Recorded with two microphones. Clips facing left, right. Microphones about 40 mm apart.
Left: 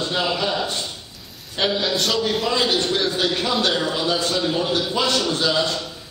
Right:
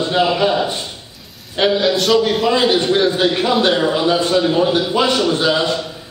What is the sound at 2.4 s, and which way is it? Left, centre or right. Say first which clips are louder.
Speech: right 6 dB; centre.